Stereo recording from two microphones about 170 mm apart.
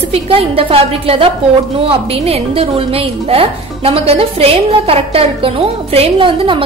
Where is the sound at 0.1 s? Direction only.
35° right (ahead or behind).